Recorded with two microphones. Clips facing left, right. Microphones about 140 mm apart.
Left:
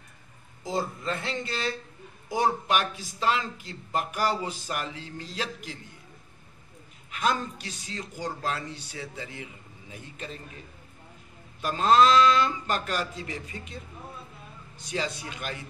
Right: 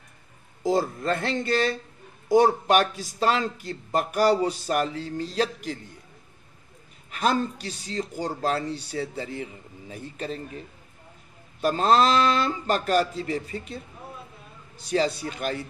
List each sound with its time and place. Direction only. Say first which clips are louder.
0.7 s a man's voice: right 7 dB; 60° right (ahead or behind); by 5.8 s 40° right (ahead or behind)
7.1 s speech: right 4 dB; 35° right (ahead or behind)
11.6 s speech: right 1 dB; 35° right (ahead or behind)
14.9 s speech: right 8 dB; 35° right (ahead or behind)